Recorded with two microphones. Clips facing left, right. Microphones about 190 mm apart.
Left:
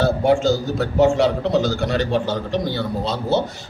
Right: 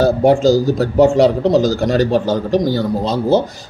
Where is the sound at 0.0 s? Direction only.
40° right (ahead or behind).